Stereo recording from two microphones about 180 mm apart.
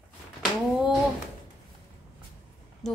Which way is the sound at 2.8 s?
Centre (ahead or behind).